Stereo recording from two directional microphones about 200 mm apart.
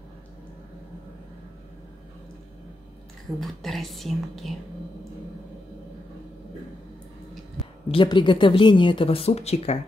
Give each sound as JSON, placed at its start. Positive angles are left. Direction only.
{"t": 3.3, "sound": "speech", "side_deg": 0}
{"t": 7.9, "sound": "speech", "side_deg": 25}